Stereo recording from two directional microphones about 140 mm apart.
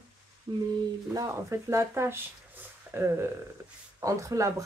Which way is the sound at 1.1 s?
20° right (ahead or behind).